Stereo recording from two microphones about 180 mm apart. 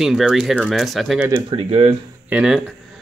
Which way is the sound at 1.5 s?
35° right (ahead or behind).